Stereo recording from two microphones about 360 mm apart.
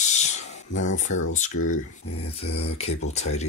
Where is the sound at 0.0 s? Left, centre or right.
Centre.